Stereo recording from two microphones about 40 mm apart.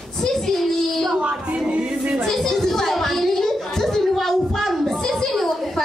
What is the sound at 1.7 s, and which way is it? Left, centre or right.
Music, right.